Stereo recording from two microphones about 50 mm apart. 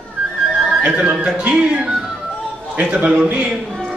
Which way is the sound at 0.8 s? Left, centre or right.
Right.